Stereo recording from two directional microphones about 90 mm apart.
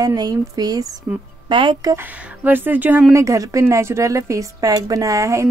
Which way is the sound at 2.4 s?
20° right (ahead or behind).